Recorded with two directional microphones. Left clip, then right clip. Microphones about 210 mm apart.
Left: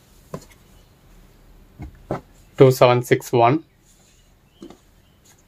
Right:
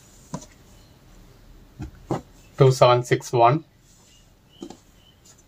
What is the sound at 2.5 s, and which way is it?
Speech, 50° left (ahead or behind).